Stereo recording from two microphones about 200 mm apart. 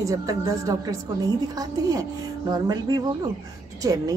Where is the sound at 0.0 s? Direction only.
15° right (ahead or behind).